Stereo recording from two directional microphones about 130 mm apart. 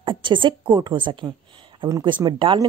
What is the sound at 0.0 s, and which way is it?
A woman's voice, 40° right (ahead or behind).